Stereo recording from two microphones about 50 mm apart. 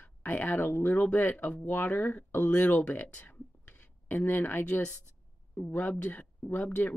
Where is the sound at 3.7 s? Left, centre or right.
Left.